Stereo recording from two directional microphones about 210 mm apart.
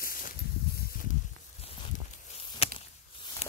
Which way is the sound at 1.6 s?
30° left (ahead or behind).